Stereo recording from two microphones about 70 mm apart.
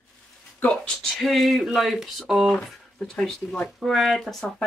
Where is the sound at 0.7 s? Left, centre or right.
Centre.